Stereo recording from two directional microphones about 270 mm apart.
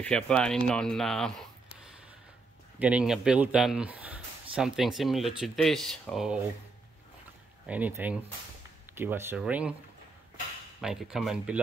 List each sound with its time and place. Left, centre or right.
0.0 s speech: centre
2.8 s speech: centre
7.6 s speech: centre
10.8 s speech: centre